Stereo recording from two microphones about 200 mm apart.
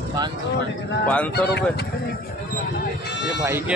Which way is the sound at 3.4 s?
10° right (ahead or behind).